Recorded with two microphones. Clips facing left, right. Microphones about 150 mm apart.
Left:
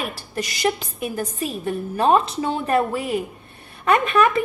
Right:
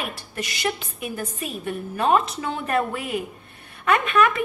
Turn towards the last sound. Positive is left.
turn(degrees=35)  # may be behind; listen again after turning